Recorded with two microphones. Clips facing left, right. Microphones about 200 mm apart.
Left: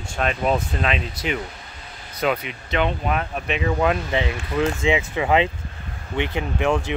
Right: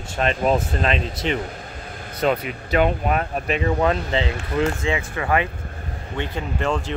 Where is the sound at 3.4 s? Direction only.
Centre (ahead or behind).